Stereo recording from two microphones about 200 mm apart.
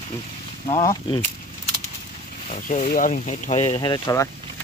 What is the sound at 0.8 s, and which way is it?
Speech, 20° left (ahead or behind).